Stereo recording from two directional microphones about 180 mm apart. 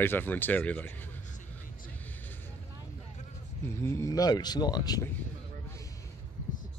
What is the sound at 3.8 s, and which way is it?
Speech, 15° left (ahead or behind).